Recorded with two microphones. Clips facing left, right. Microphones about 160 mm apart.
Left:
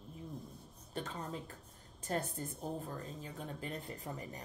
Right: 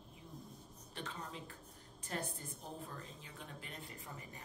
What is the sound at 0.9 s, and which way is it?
A woman's voice, 40° left (ahead or behind).